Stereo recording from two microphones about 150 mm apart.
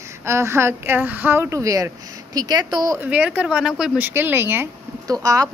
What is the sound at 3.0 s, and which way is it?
A woman's voice, 10° right (ahead or behind).